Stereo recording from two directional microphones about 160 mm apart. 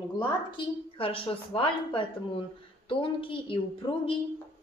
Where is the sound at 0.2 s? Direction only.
30° left (ahead or behind).